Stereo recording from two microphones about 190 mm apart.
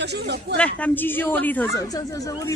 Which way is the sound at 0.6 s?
10° left (ahead or behind).